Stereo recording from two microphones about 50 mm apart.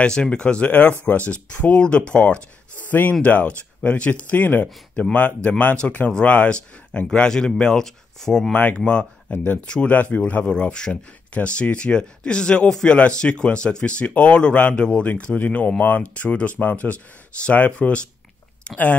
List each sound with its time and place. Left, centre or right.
0.0 s speech: centre
9.3 s speech: left
10.5 s speech: centre